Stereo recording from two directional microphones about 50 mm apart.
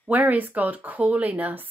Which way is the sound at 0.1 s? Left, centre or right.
Right.